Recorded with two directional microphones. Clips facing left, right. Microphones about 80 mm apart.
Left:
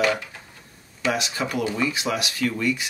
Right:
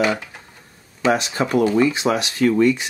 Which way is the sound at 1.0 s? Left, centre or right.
Right.